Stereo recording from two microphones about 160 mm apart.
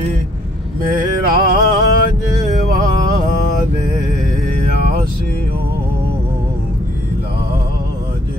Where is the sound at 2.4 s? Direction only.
50° right (ahead or behind).